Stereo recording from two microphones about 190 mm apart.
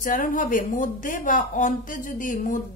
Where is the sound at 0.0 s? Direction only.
45° left (ahead or behind).